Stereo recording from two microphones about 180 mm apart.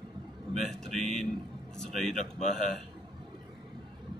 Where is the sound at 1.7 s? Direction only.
Centre (ahead or behind).